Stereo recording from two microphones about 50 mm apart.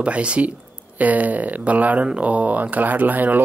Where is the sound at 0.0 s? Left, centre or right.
Right.